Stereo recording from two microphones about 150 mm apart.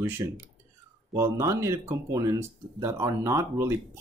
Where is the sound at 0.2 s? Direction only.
25° right (ahead or behind).